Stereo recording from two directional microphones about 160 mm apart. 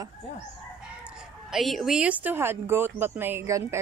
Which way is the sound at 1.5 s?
Centre (ahead or behind).